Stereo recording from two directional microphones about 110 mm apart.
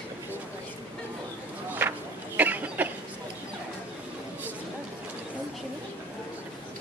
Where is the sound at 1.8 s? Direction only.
20° right (ahead or behind).